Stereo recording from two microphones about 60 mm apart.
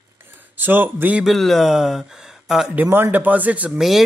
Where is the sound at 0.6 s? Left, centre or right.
Right.